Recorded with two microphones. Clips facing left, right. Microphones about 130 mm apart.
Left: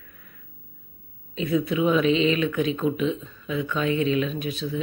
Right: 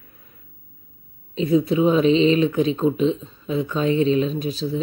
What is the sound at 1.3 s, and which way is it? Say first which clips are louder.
Speech: right 5 dB; 35° right (ahead or behind).